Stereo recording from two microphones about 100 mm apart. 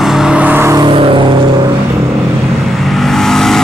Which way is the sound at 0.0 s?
5° right (ahead or behind).